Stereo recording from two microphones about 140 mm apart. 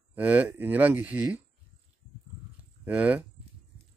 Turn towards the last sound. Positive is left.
turn(degrees=-10)  # may be behind; listen again after turning